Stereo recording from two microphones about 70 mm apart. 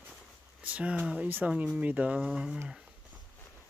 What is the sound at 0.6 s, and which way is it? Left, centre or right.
Speech, right.